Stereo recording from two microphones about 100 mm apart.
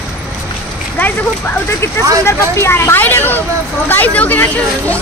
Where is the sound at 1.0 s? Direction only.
20° left (ahead or behind).